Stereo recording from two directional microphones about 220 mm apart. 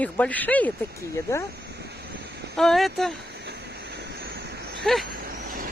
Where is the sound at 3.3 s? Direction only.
50° right (ahead or behind).